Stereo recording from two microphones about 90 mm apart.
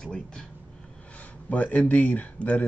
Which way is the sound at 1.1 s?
15° left (ahead or behind).